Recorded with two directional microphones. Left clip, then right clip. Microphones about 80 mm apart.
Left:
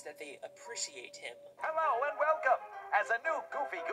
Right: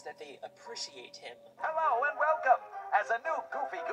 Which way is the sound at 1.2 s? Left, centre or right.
Left.